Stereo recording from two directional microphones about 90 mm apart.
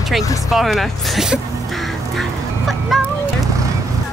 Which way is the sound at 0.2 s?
35° left (ahead or behind).